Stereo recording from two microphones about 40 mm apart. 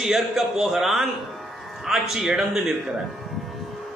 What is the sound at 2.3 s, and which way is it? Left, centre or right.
Speech, centre.